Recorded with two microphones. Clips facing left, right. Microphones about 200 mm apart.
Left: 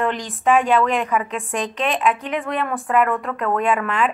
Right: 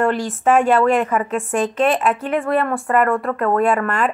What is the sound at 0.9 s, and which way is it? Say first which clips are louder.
Speech: right 3 dB; 50° right (ahead or behind).